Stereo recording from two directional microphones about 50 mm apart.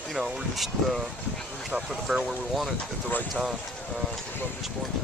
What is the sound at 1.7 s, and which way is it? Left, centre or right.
Speech, centre.